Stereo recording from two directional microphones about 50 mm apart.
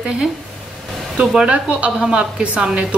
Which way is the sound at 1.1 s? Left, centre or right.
Centre.